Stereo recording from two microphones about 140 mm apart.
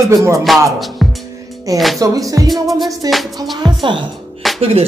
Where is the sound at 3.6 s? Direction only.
35° right (ahead or behind).